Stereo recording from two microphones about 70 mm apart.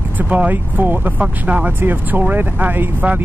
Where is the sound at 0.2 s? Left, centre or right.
Right.